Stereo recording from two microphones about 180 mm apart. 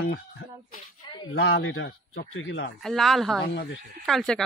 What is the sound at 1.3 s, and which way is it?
Speech, 75° left (ahead or behind).